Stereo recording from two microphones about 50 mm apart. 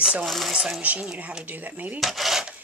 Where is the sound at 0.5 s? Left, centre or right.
Centre.